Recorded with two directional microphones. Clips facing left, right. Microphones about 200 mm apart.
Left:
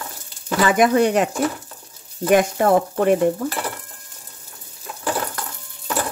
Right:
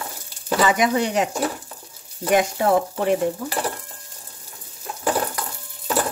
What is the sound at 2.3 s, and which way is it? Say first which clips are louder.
Speech: left 3 dB; 55° left (ahead or behind).